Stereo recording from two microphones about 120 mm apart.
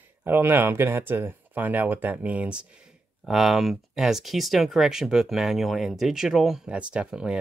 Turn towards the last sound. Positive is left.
turn(degrees=-5)  # may be behind; listen again after turning